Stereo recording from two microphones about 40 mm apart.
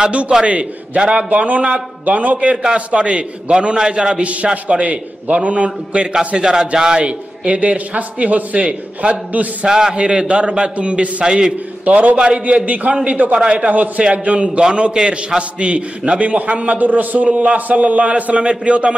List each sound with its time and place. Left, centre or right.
0.4 s a man's voice: right
1.3 s a man's voice: right
2.5 s a man's voice: right
4.2 s a man's voice: right
6.3 s a man's voice: centre; by 9.7 s right
9.7 s a man's voice: centre
11.2 s a man's voice: centre
11.8 s a man's voice: right
12.2 s a man's voice: right
12.6 s a man's voice: right
13.7 s a man's voice: right
14.6 s a man's voice: centre
16.2 s a man's voice: right